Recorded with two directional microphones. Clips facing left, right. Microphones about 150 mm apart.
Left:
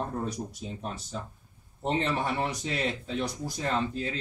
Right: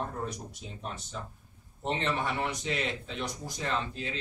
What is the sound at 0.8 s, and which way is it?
Speech, 35° left (ahead or behind).